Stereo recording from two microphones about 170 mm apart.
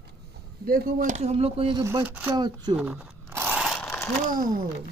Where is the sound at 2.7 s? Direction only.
10° right (ahead or behind).